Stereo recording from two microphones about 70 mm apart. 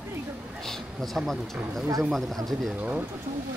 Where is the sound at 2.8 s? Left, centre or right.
Right.